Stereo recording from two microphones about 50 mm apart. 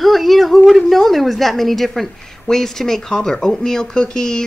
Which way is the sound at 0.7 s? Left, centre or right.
Centre.